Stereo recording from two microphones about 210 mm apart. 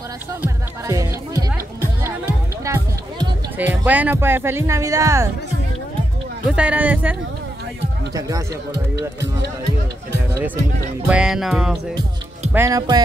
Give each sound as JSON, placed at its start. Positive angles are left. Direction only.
{"t": 0.3, "sound": "music", "side_deg": -15}
{"t": 3.7, "sound": "speech", "side_deg": -5}
{"t": 6.4, "sound": "speech", "side_deg": -5}
{"t": 10.3, "sound": "speech", "side_deg": -10}
{"t": 11.1, "sound": "music", "side_deg": -5}
{"t": 12.5, "sound": "speech", "side_deg": -15}